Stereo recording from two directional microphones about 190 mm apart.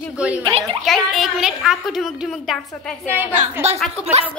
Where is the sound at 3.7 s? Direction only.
35° right (ahead or behind).